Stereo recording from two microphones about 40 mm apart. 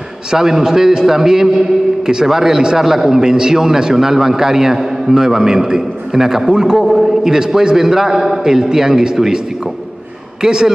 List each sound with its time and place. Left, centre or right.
0.3 s a man's voice: centre
10.4 s a man's voice: centre